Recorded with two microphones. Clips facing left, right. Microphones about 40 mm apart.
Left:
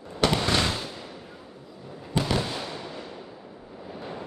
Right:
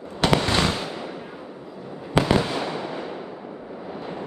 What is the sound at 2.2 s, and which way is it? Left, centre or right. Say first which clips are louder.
Fireworks: right 6 dB; right.